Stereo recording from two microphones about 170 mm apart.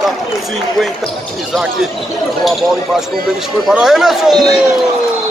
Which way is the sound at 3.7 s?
Centre (ahead or behind).